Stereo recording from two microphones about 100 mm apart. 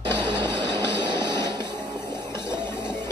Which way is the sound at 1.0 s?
50° right (ahead or behind).